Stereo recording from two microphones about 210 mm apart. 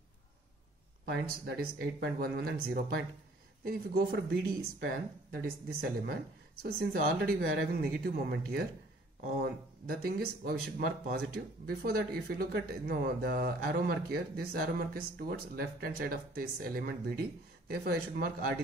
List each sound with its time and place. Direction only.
1.0 s speech: 50° right (ahead or behind)